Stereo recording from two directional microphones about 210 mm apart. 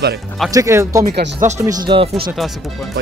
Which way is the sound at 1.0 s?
50° right (ahead or behind).